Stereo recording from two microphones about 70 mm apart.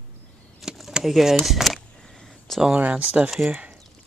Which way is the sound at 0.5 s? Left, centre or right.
Centre.